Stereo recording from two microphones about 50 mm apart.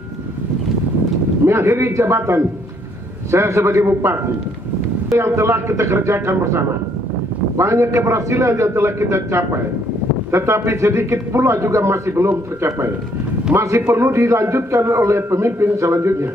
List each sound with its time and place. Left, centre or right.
1.4 s a man's voice: right
3.3 s a man's voice: right
5.1 s a man's voice: right
13.6 s a man's voice: right